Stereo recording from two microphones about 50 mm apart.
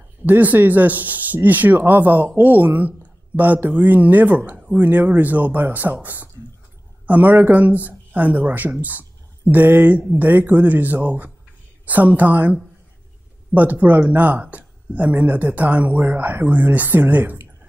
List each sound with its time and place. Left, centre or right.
0.2 s speech: right
7.1 s speech: right
13.6 s speech: right